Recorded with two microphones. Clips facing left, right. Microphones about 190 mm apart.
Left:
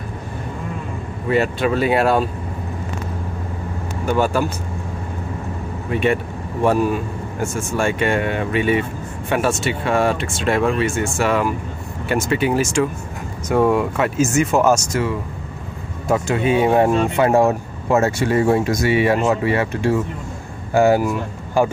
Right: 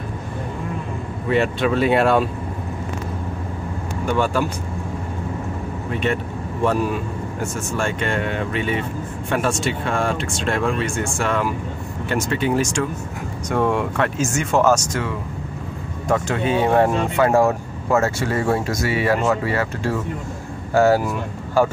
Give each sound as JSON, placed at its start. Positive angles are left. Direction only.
{"t": 1.3, "sound": "speech", "side_deg": 5}
{"t": 6.0, "sound": "speech", "side_deg": 10}
{"t": 7.5, "sound": "speech", "side_deg": 10}